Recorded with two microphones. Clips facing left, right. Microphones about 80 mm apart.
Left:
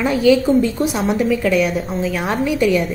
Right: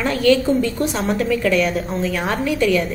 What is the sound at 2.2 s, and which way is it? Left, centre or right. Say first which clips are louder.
Speech: left 2 dB; centre.